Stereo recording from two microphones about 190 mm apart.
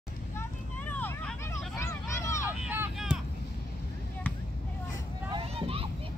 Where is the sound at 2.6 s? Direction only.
5° right (ahead or behind).